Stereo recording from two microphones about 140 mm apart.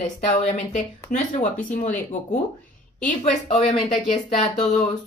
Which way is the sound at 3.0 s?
55° left (ahead or behind).